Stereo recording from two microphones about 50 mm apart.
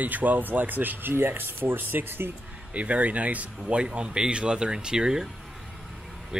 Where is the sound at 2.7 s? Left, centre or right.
Right.